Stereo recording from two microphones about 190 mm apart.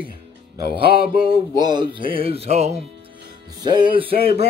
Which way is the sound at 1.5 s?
25° right (ahead or behind).